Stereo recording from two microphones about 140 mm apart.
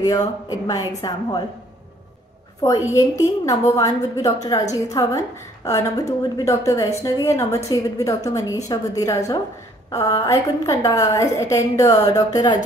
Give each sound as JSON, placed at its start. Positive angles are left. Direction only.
{"t": 0.0, "sound": "a woman's voice", "side_deg": 25}
{"t": 2.9, "sound": "a woman's voice", "side_deg": 20}